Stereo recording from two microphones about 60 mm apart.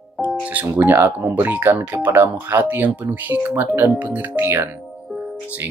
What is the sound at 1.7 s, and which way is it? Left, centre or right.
Speech, right.